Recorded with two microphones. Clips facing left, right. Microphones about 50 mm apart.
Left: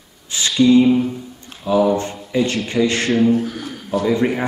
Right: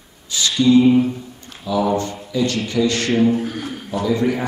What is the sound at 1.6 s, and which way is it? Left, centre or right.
A man's voice, left.